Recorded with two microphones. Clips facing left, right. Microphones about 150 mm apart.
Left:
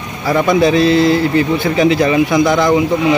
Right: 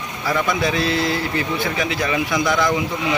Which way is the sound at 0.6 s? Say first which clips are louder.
Left 10 dB; 25° left (ahead or behind).